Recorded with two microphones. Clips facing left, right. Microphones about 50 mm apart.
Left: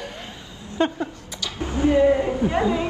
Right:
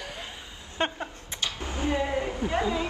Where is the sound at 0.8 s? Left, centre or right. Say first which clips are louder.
Left 7 dB; right.